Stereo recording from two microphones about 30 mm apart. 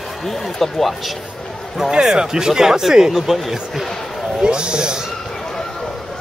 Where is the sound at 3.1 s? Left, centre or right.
Centre.